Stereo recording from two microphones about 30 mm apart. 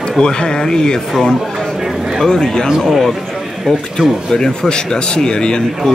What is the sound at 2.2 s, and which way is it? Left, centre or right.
Speech, left.